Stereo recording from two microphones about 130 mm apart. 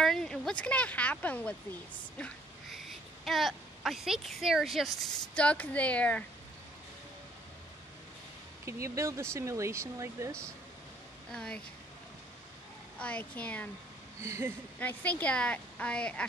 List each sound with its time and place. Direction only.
0.0 s speech: 5° left (ahead or behind)
2.7 s speech: centre (ahead or behind)
5.3 s a woman's voice: 10° left (ahead or behind)
8.6 s speech: 20° right (ahead or behind)
11.3 s a woman's voice: 5° left (ahead or behind)
13.0 s a woman's voice: 10° left (ahead or behind)
14.2 s speech: 20° right (ahead or behind)
14.8 s a woman's voice: 15° left (ahead or behind)